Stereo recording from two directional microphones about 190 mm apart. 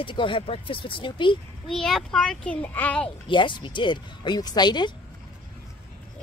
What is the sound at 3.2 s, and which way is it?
Speech, 25° left (ahead or behind).